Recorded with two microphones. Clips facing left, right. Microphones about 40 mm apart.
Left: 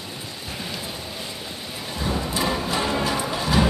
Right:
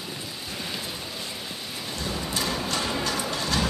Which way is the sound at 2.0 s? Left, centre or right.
Centre.